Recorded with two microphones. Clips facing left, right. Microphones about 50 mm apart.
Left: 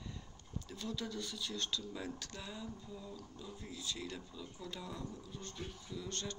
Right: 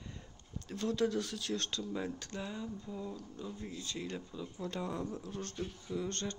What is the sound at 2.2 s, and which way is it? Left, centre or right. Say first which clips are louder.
Speech: right 5 dB; right.